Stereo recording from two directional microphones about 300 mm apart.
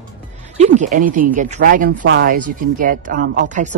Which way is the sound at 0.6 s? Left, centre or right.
Right.